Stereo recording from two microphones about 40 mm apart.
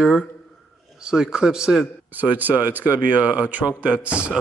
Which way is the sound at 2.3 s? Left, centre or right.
Right.